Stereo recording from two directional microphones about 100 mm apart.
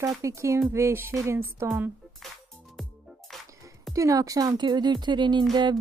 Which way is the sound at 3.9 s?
35° right (ahead or behind).